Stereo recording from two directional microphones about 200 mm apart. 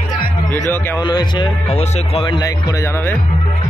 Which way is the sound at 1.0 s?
20° left (ahead or behind).